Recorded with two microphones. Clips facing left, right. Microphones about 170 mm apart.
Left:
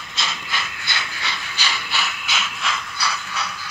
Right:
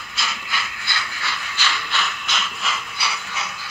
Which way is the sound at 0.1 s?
20° left (ahead or behind).